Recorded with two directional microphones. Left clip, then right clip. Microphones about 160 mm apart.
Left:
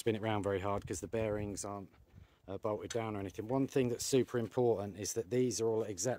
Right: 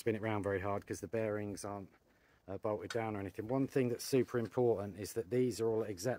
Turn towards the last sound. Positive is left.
turn(degrees=15)  # may be behind; listen again after turning